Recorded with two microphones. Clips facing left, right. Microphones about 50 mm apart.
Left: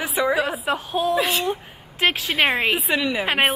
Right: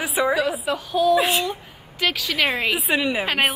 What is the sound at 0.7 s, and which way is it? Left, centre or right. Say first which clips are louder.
Speech: right 3 dB; left.